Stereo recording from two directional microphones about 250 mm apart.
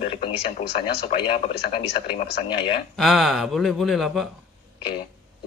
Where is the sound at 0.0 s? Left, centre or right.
Left.